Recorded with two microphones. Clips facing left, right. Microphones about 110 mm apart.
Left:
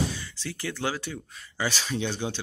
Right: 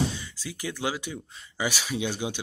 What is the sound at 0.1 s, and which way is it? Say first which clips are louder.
Speech: left 1 dB; 15° right (ahead or behind).